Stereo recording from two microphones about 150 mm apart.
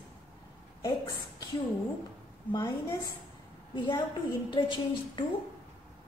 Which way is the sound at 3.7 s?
35° left (ahead or behind).